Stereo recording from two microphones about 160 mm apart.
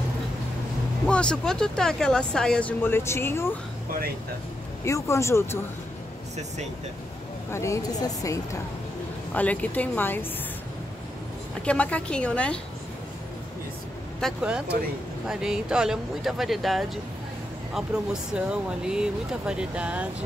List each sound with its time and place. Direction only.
1.0 s speech: 5° left (ahead or behind)
4.8 s a woman's voice: 20° left (ahead or behind)
7.5 s a woman's voice: 20° left (ahead or behind)
9.3 s a woman's voice: 10° left (ahead or behind)
11.6 s a woman's voice: 10° left (ahead or behind)
14.2 s speech: 5° right (ahead or behind)